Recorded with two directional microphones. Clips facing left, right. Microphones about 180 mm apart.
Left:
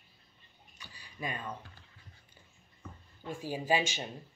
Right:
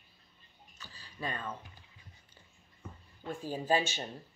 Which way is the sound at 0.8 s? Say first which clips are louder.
Even; 15° left (ahead or behind).